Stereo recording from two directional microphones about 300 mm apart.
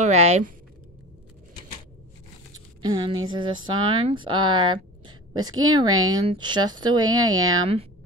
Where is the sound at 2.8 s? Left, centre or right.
Centre.